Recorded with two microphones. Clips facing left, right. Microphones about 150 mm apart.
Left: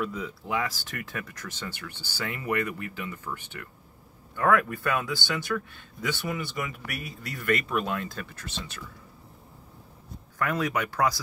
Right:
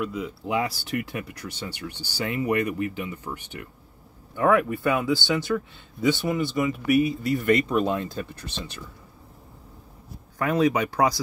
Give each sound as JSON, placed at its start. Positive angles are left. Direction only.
{"t": 0.0, "sound": "speech", "side_deg": -10}
{"t": 7.4, "sound": "speech", "side_deg": -20}
{"t": 10.4, "sound": "speech", "side_deg": -30}